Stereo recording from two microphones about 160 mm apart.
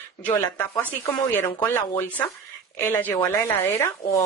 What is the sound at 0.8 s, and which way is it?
Speech, 20° left (ahead or behind).